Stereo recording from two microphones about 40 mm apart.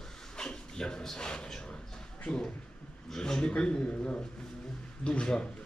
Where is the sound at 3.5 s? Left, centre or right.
Left.